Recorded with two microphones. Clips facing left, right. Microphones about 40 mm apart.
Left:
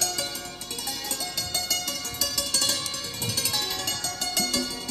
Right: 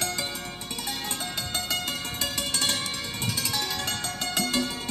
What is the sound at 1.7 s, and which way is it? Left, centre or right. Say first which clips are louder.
Music: right 1 dB; right.